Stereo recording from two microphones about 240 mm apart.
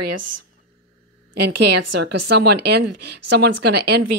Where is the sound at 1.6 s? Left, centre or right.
Right.